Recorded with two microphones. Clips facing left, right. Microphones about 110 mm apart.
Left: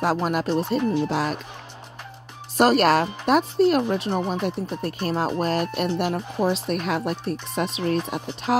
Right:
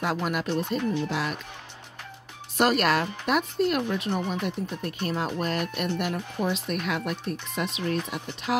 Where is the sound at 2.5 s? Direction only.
35° left (ahead or behind).